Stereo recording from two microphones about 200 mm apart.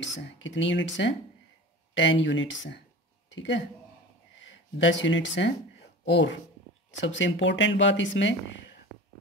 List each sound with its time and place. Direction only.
0.0 s speech: 65° left (ahead or behind)